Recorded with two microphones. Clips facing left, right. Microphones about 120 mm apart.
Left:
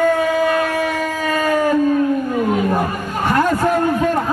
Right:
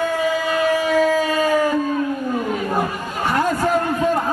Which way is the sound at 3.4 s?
55° left (ahead or behind).